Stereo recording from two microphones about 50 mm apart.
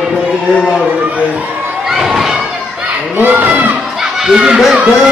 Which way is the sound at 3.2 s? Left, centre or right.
Right.